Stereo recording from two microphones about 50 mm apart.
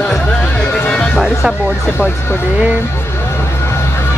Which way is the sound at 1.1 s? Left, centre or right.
Centre.